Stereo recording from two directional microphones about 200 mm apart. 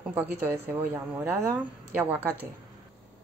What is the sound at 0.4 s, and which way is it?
Speech, 10° right (ahead or behind).